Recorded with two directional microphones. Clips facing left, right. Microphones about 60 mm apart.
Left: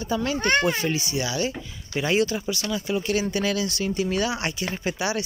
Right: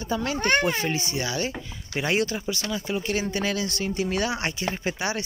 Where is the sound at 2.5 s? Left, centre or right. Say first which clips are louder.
Left 2 dB; right.